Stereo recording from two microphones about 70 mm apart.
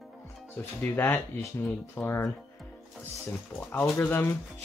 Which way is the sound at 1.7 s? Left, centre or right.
Left.